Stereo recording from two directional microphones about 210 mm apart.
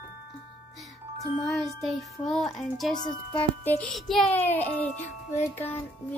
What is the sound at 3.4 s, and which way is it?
A child's voice, 10° left (ahead or behind).